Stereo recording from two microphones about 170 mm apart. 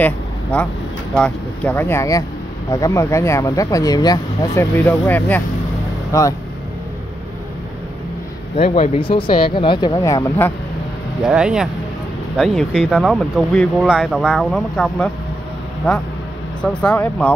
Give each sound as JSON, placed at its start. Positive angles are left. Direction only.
{"t": 0.0, "sound": "vehicle", "side_deg": 5}
{"t": 1.1, "sound": "speech", "side_deg": 5}
{"t": 8.5, "sound": "speech", "side_deg": 35}
{"t": 11.2, "sound": "speech", "side_deg": -5}